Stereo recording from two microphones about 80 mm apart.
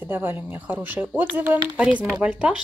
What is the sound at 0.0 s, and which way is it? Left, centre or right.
Speech, right.